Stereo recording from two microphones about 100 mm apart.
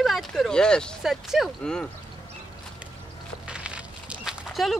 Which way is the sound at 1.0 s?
5° right (ahead or behind).